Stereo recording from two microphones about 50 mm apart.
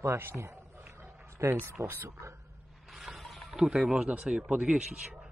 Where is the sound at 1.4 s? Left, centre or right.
Right.